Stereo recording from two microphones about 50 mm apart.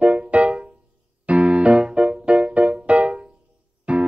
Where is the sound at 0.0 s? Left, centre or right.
Right.